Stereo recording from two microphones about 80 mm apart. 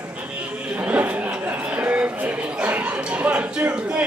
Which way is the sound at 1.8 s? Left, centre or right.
Centre.